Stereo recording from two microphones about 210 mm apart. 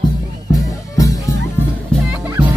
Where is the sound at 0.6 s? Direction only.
15° left (ahead or behind).